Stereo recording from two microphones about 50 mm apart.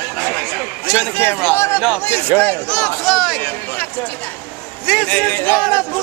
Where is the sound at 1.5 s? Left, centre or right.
Left.